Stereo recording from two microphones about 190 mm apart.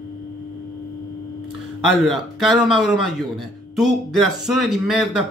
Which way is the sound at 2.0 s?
Centre (ahead or behind).